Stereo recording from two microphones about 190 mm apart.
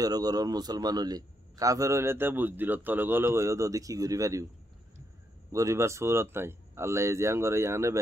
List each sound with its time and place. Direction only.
0.0 s a man's voice: 20° right (ahead or behind)
5.5 s a man's voice: 15° right (ahead or behind)